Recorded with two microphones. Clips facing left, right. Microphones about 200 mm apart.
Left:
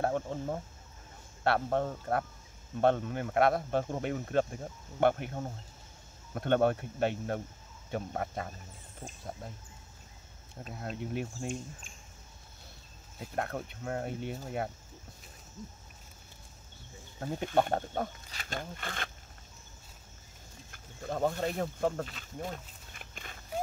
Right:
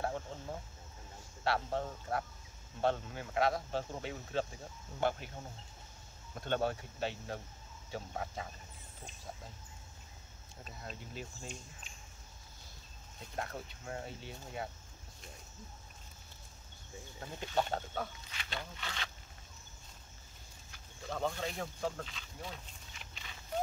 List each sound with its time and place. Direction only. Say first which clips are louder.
0.0 s speech: left 7 dB; 55° left (ahead or behind)
10.6 s speech: left 9 dB; 55° left (ahead or behind)
13.2 s speech: left 7 dB; 60° left (ahead or behind)
17.4 s speech: left 6 dB; 55° left (ahead or behind)
20.7 s speech: left 5 dB; 50° left (ahead or behind)